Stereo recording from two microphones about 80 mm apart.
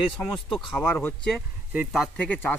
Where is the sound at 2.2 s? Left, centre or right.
Centre.